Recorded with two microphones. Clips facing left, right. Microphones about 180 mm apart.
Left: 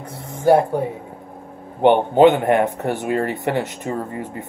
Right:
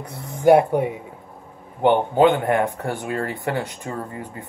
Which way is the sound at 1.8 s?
25° left (ahead or behind).